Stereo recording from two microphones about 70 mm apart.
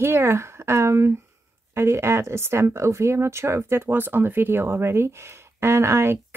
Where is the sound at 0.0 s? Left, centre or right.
Right.